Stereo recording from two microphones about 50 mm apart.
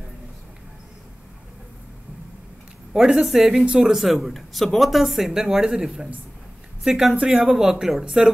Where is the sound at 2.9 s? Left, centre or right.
Centre.